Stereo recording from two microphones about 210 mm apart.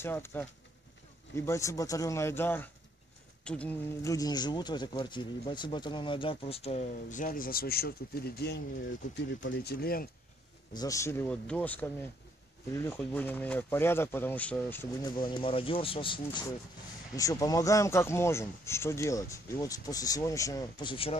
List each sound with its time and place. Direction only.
0.0 s speech: 10° left (ahead or behind); by 10.0 s 45° left (ahead or behind)
10.7 s speech: 15° left (ahead or behind)